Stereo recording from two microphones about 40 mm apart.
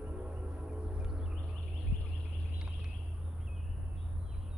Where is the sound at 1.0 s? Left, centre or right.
Centre.